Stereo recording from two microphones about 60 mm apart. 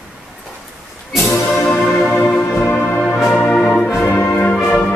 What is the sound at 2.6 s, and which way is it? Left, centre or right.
Music, left.